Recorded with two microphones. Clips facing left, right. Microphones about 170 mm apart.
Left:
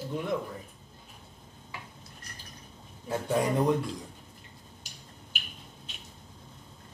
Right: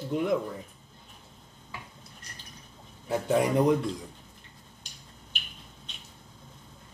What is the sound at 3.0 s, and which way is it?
Speech, 20° right (ahead or behind).